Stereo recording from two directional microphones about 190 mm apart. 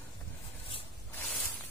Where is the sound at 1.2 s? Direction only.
10° left (ahead or behind).